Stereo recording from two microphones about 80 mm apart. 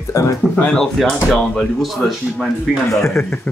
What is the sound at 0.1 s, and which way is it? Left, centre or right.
Speech, left.